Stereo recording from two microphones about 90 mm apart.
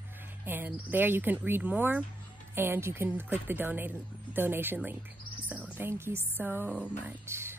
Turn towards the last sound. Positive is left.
turn(degrees=-30)  # may be behind; listen again after turning